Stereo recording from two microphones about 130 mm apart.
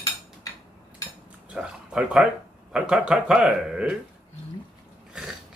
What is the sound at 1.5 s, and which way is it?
Speech, 5° right (ahead or behind).